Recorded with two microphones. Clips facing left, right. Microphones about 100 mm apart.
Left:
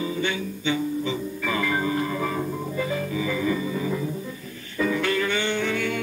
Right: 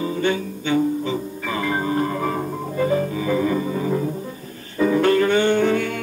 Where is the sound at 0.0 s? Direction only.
45° right (ahead or behind).